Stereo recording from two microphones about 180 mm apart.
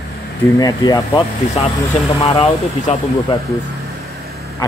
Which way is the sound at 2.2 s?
35° left (ahead or behind).